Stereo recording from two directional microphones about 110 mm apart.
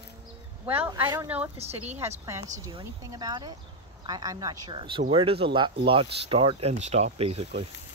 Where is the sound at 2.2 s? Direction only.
30° right (ahead or behind); by 7.6 s 75° right (ahead or behind).